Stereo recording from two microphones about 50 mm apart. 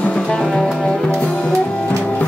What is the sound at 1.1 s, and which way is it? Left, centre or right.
Music, left.